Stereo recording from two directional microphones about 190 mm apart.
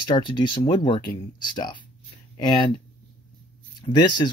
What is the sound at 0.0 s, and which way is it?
Speech, 25° left (ahead or behind).